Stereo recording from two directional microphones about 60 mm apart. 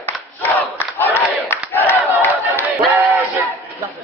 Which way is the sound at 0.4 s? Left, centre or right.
Left.